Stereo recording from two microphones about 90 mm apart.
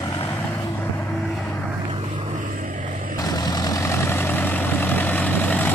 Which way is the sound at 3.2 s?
45° left (ahead or behind).